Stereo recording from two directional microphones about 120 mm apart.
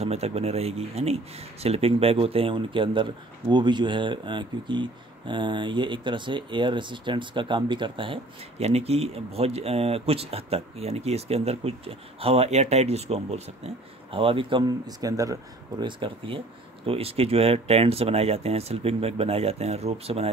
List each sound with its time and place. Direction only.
0.0 s speech: 60° right (ahead or behind)
14.1 s speech: 50° right (ahead or behind)
14.9 s speech: 30° right (ahead or behind)
15.8 s speech: 45° right (ahead or behind)